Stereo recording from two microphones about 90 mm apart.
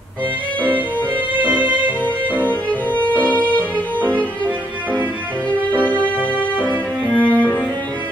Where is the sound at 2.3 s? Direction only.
20° left (ahead or behind).